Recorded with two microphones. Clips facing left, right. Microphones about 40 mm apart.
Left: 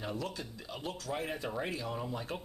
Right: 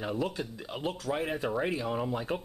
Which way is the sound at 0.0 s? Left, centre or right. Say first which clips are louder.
Right 6 dB; right.